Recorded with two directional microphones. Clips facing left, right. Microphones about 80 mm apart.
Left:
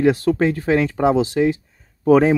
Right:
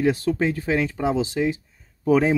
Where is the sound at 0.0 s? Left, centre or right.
Left.